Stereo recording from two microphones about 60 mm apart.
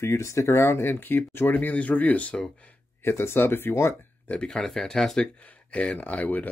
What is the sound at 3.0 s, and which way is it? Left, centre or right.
Speech, left.